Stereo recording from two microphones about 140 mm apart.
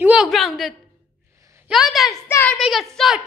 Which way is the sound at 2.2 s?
15° left (ahead or behind).